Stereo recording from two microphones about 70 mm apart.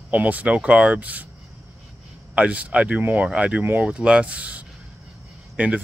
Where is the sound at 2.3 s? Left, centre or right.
Centre.